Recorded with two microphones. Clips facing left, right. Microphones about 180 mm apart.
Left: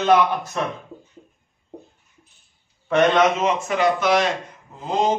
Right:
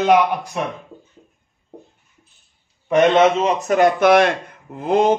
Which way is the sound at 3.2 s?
35° right (ahead or behind).